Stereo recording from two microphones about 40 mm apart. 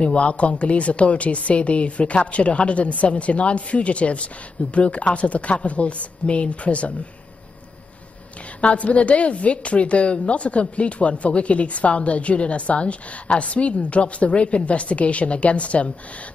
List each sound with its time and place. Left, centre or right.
0.0 s a woman's voice: left
8.5 s a woman's voice: left